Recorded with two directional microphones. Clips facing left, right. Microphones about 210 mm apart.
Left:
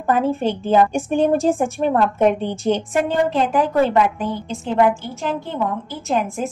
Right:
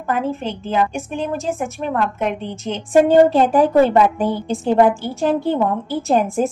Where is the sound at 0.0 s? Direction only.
35° left (ahead or behind).